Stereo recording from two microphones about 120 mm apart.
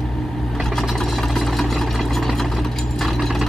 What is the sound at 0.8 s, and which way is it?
Engine, centre (ahead or behind).